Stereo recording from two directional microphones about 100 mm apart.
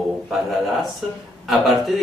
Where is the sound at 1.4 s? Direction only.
Centre (ahead or behind).